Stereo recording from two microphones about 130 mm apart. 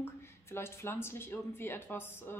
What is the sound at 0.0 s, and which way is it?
Speech, 20° left (ahead or behind).